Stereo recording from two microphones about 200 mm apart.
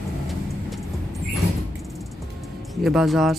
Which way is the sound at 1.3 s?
Centre (ahead or behind).